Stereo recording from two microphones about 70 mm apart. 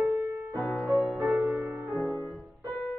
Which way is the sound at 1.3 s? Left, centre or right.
Right.